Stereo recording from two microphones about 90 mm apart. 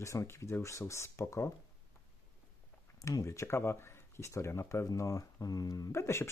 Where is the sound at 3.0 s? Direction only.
35° left (ahead or behind).